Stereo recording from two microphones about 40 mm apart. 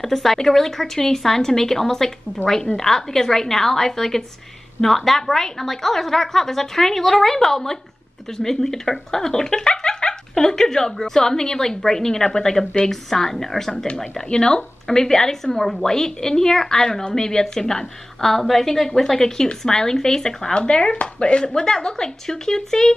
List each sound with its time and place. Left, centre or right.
0.0 s speech: centre
14.3 s speech: centre
20.5 s speech: left